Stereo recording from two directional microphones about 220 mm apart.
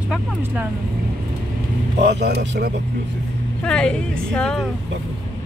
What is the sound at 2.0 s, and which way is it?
Speech, 50° right (ahead or behind).